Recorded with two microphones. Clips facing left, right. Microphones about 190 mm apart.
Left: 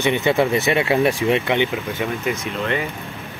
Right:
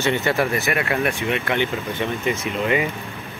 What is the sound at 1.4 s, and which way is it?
Speech, 20° left (ahead or behind).